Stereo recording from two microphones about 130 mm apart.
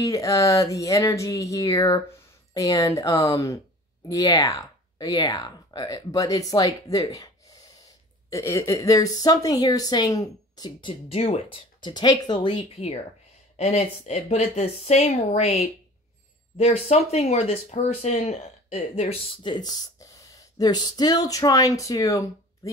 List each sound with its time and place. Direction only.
0.0 s a woman's voice: 25° left (ahead or behind)
8.3 s a woman's voice: 25° left (ahead or behind)
12.7 s speech: 55° left (ahead or behind)
16.5 s speech: 55° left (ahead or behind)
19.5 s speech: 30° left (ahead or behind)